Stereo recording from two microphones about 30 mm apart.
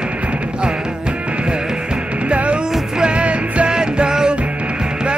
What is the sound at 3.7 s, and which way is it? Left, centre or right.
Music, right.